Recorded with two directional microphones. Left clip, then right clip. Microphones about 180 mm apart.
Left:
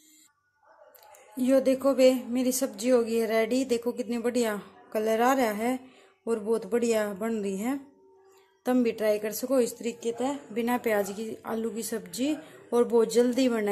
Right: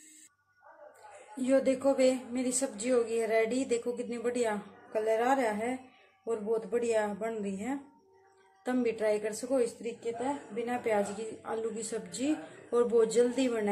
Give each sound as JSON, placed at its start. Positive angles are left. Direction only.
{"t": 1.3, "sound": "speech", "side_deg": 30}